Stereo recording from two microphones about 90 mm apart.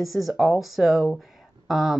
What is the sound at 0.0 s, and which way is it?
Speech, centre (ahead or behind).